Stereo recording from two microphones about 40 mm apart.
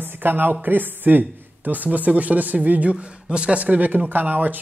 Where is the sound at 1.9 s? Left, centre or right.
Right.